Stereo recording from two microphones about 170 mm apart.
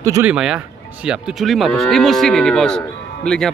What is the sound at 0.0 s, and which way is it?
Speech, 20° right (ahead or behind).